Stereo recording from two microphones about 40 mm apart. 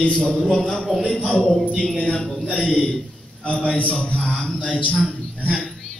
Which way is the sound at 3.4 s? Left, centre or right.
Left.